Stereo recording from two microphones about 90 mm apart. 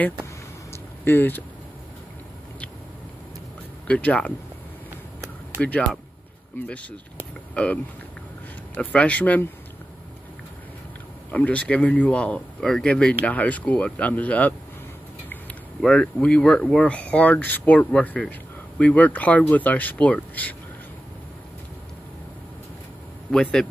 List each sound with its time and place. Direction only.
1.0 s speech: 25° left (ahead or behind)
3.8 s speech: 15° left (ahead or behind)
5.6 s speech: 15° left (ahead or behind)
11.3 s speech: 15° left (ahead or behind)
15.8 s speech: 10° left (ahead or behind)
23.3 s speech: 5° left (ahead or behind)